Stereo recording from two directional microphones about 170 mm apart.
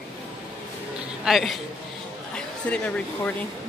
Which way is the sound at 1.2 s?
Centre (ahead or behind).